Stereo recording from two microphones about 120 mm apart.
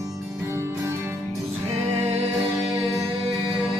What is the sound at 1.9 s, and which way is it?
Music, 65° right (ahead or behind).